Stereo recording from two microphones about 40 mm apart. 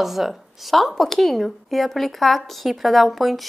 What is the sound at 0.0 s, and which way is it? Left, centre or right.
A woman's voice, centre.